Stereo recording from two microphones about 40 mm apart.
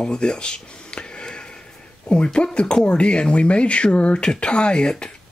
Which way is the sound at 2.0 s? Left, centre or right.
Left.